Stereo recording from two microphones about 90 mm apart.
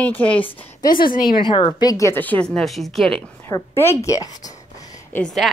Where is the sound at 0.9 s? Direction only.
65° left (ahead or behind).